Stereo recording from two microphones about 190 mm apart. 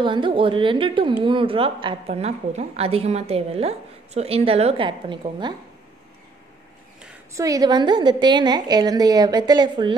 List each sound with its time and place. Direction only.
0.0 s a woman's voice: 25° right (ahead or behind)
7.3 s a woman's voice: 20° right (ahead or behind)